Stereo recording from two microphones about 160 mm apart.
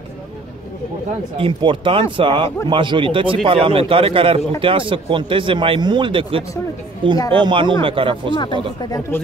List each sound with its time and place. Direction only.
1.3 s speech: 35° right (ahead or behind)
8.4 s speech: 30° left (ahead or behind)